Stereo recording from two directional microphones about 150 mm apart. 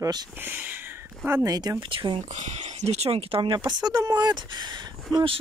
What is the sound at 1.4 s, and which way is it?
Speech, 25° right (ahead or behind).